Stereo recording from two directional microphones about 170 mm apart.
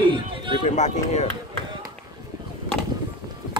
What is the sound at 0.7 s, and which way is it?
Speech, 45° left (ahead or behind).